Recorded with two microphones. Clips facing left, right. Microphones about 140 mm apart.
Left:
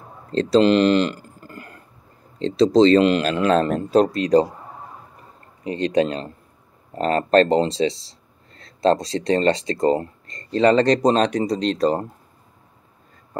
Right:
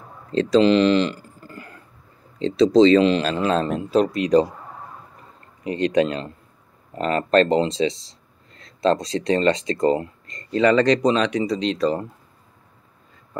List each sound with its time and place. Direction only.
0.3 s a sound: 35° left (ahead or behind)
2.3 s speech: 35° left (ahead or behind)
3.0 s speech: 50° left (ahead or behind)
5.6 s speech: 30° left (ahead or behind)